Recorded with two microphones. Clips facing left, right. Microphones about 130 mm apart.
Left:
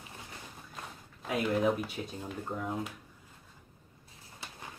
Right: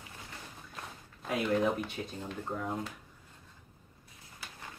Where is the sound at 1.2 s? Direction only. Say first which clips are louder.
Left 1 dB; 5° left (ahead or behind).